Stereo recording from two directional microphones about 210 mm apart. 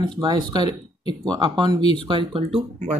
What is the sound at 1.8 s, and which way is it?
Speech, 30° left (ahead or behind).